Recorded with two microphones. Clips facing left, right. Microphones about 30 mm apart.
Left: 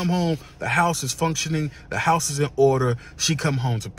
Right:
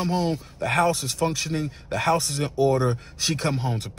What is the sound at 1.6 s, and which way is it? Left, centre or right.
Speech, right.